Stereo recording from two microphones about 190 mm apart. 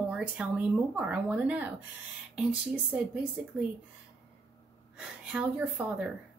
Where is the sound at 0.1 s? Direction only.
5° right (ahead or behind).